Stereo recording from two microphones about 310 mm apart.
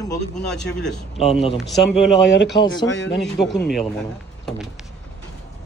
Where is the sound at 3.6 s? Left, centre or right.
Centre.